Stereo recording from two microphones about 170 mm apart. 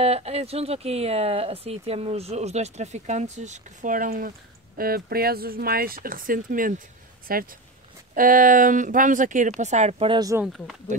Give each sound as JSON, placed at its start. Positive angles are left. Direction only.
{"t": 0.0, "sound": "speech", "side_deg": -35}